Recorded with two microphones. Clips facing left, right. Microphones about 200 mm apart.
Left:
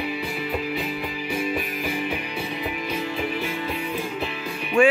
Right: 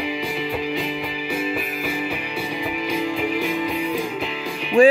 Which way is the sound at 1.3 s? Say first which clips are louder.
Right 1 dB; 5° right (ahead or behind).